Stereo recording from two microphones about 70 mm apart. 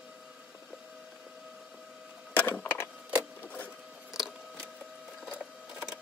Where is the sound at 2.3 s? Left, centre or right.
Left.